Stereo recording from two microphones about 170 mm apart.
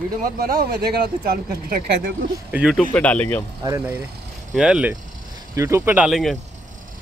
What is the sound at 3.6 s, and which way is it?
Speech, 20° right (ahead or behind).